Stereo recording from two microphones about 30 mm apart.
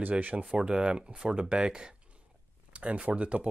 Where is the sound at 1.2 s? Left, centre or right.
Right.